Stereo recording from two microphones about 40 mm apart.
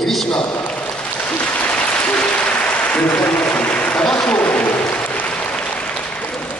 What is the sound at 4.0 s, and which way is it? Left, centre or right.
Applause, centre.